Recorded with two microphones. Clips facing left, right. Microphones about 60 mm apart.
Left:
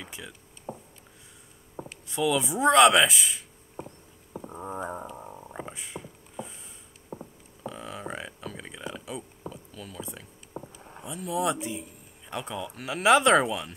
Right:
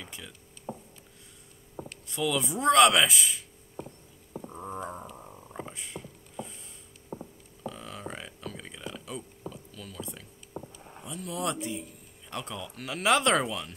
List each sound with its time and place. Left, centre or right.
0.0 s chop: centre
1.8 s speech: centre
3.8 s horse: centre
4.3 s a sound: centre
5.7 s mechanisms: centre
7.2 s a sound: centre
11.0 s speech: centre